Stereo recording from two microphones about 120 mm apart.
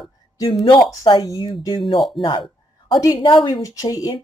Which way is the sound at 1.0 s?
35° left (ahead or behind).